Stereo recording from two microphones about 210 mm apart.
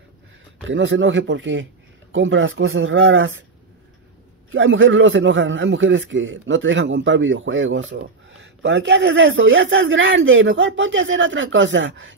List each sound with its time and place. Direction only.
0.7 s a man's voice: 65° right (ahead or behind)
4.5 s a man's voice: 65° right (ahead or behind)